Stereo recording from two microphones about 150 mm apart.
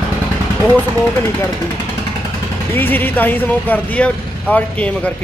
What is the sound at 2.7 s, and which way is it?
Speech, 10° left (ahead or behind).